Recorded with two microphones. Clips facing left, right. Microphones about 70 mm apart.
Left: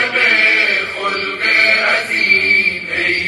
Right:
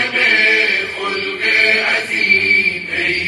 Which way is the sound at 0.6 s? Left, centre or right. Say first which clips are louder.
Left 1 dB; left.